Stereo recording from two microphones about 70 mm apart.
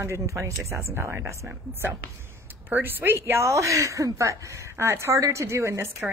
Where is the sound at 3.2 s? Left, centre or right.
Right.